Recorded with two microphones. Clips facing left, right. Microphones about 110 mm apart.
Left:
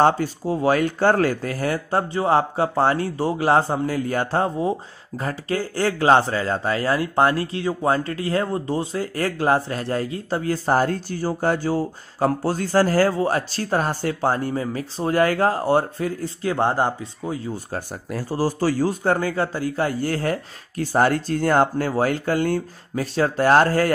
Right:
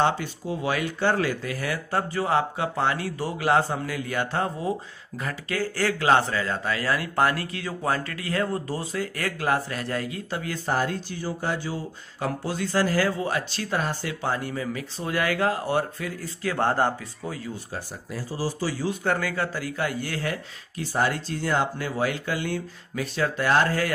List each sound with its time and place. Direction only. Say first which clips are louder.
0.0 s speech: left 6 dB; 40° left (ahead or behind); by 17.4 s 20° left (ahead or behind)
17.7 s a man's voice: left 6 dB; 50° left (ahead or behind)